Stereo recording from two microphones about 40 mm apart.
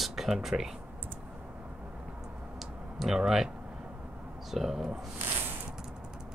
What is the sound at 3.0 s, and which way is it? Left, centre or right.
Speech, centre.